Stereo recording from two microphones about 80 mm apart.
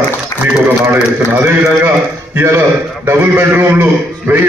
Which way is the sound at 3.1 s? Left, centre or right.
Right.